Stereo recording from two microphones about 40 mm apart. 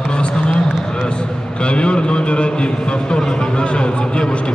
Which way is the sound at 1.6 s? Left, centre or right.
Left.